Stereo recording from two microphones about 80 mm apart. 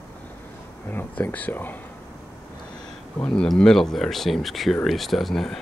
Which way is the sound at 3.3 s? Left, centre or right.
Centre.